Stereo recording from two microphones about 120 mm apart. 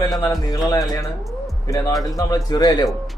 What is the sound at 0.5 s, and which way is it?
Speech, 30° left (ahead or behind).